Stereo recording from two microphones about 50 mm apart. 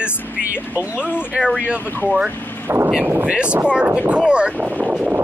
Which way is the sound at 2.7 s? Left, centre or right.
Right.